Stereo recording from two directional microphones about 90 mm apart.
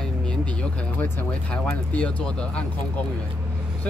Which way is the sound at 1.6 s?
15° left (ahead or behind).